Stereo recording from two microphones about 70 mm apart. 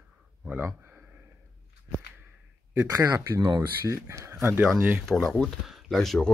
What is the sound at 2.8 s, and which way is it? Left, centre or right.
Speech, right.